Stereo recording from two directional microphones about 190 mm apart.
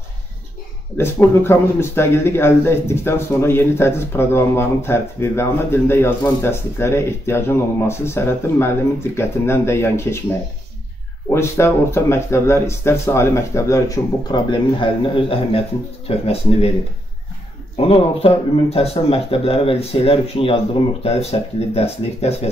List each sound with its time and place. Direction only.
0.9 s speech: 15° left (ahead or behind)
11.2 s speech: 15° left (ahead or behind); by 16.7 s 30° left (ahead or behind)
17.7 s speech: 30° left (ahead or behind)